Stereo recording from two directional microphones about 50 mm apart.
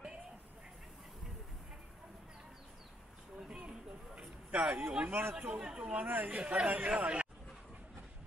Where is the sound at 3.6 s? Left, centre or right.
Right.